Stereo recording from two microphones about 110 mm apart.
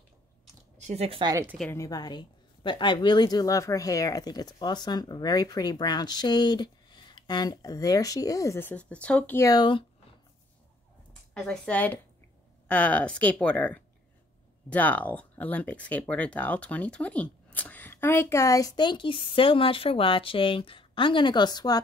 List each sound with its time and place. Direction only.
0.7 s speech: 80° right
1.2 s a woman's voice: 30° right (ahead or behind)
1.7 s a woman's voice: 30° left (ahead or behind)
8.5 s speech: 15° left (ahead or behind)
9.5 s speech: 45° left (ahead or behind)
11.3 s speech: 10° left (ahead or behind); by 21.7 s 40° left (ahead or behind)